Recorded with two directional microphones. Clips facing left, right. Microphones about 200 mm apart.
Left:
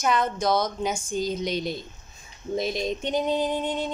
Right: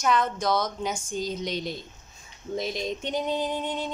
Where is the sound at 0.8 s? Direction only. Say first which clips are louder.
Left 3 dB; 10° left (ahead or behind).